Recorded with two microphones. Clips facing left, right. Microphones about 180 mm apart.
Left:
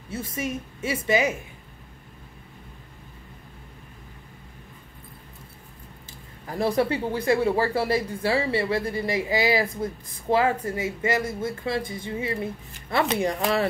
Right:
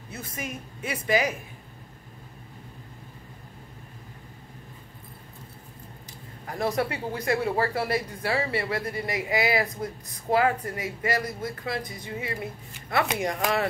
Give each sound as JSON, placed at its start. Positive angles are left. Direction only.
{"t": 0.3, "sound": "speech", "side_deg": 25}
{"t": 6.6, "sound": "speech", "side_deg": 30}